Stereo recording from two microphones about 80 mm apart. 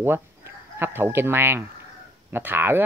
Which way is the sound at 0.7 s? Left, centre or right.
Right.